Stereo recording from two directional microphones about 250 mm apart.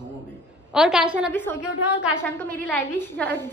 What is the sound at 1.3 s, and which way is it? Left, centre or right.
A woman's voice, centre.